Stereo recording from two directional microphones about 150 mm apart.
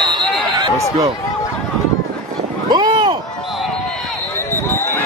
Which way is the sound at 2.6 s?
30° right (ahead or behind).